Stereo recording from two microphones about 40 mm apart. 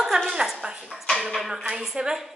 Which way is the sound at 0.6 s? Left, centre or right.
Centre.